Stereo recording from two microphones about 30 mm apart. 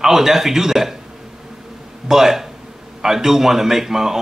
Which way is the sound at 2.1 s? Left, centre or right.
Centre.